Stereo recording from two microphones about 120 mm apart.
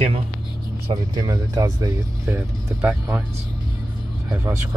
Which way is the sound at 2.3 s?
10° right (ahead or behind).